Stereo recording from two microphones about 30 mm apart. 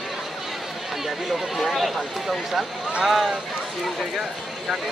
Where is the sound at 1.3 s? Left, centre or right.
Centre.